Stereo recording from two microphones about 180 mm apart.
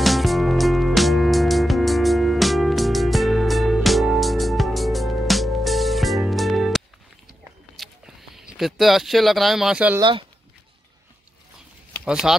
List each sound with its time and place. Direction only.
0.0 s music: centre (ahead or behind)
7.7 s a sound: centre (ahead or behind)
9.9 s speech: 25° right (ahead or behind)
12.0 s speech: 5° right (ahead or behind)